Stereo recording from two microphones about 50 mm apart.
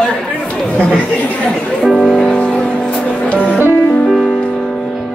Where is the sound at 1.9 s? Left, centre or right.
Centre.